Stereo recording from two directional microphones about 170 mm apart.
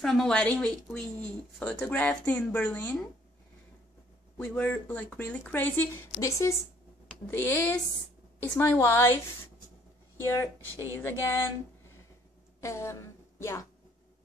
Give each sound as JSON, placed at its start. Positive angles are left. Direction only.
{"t": 0.0, "sound": "speech", "side_deg": 0}
{"t": 4.4, "sound": "speech", "side_deg": 10}
{"t": 10.2, "sound": "speech", "side_deg": 15}
{"t": 12.5, "sound": "a woman's voice", "side_deg": 15}